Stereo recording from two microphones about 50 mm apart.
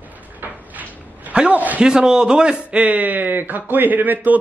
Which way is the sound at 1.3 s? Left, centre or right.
Right.